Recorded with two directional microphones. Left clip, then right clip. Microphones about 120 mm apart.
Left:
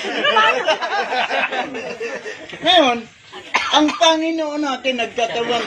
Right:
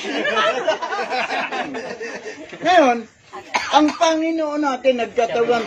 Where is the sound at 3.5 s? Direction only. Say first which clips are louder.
Even; 15° right (ahead or behind).